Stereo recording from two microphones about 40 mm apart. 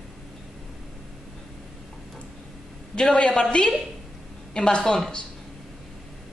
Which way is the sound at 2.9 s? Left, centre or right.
Left.